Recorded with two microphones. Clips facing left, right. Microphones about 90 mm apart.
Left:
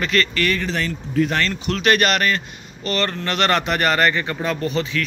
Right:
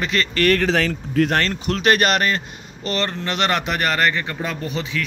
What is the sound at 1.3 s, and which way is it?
Speech, 40° right (ahead or behind).